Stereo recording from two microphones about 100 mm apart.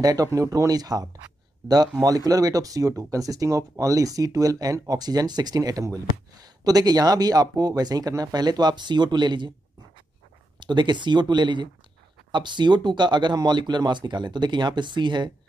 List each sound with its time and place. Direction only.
0.0 s speech: 35° right (ahead or behind)
10.6 s speech: 50° right (ahead or behind)